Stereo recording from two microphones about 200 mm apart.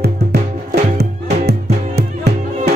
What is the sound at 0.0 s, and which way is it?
Music, 55° right (ahead or behind).